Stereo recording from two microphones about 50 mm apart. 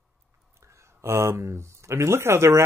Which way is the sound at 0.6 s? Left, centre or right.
Right.